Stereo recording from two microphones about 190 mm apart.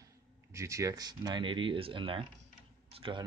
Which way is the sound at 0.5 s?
15° right (ahead or behind).